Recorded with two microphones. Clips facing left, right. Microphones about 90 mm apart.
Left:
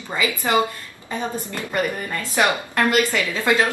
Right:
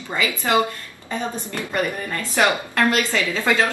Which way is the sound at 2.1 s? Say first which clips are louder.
Right 1 dB; 15° left (ahead or behind).